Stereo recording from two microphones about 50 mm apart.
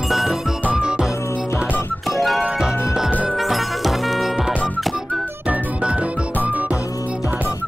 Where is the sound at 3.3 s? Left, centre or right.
Centre.